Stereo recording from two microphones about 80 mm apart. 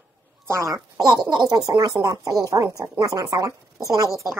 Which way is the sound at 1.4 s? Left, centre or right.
Right.